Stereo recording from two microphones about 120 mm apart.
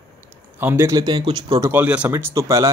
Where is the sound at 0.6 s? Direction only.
20° right (ahead or behind); by 1.4 s 40° right (ahead or behind).